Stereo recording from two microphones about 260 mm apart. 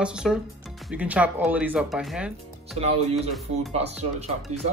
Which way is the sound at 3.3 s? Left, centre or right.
Centre.